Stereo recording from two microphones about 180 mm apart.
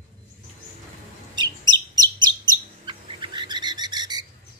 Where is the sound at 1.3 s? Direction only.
25° right (ahead or behind).